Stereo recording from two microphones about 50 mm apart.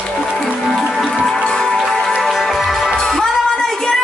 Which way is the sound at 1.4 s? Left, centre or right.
Centre.